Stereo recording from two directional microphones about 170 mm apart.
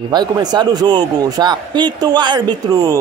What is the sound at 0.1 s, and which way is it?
A man's voice, 25° right (ahead or behind).